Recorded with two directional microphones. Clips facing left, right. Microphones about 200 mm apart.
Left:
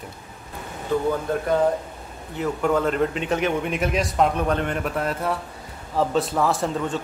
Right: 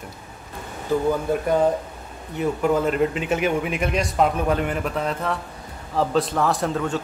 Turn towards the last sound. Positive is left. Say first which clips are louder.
# right 1 dB
turn(degrees=0)  # may be behind; listen again after turning